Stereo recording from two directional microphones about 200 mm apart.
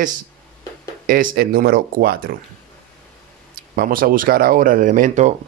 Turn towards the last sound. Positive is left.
turn(degrees=-40)  # may be behind; listen again after turning